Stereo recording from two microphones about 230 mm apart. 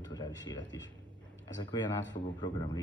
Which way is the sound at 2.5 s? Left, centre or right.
Centre.